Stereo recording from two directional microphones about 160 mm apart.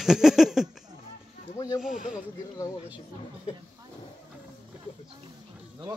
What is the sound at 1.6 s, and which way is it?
Speech, 20° left (ahead or behind).